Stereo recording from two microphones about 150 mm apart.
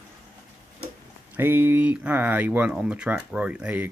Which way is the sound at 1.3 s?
15° right (ahead or behind).